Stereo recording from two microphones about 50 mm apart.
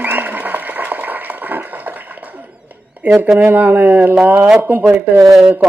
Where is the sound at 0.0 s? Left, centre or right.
Right.